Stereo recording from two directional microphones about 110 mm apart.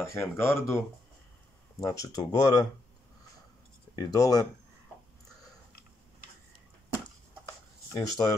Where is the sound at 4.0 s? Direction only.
35° left (ahead or behind).